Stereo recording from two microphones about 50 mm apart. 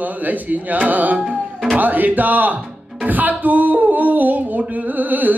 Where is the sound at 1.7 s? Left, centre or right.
Right.